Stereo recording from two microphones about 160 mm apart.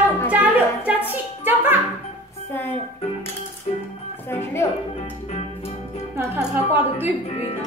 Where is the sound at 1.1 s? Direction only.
10° right (ahead or behind).